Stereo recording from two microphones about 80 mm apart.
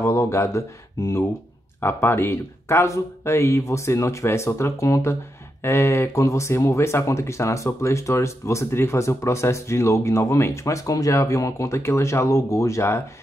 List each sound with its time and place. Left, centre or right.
0.0 s speech: left